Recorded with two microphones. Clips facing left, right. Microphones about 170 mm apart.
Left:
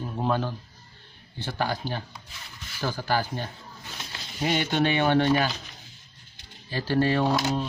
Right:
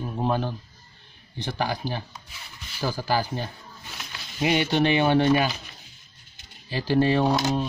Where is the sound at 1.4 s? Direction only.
15° right (ahead or behind).